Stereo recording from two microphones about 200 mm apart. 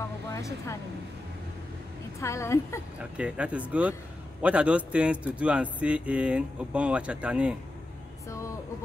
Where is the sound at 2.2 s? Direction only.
15° left (ahead or behind).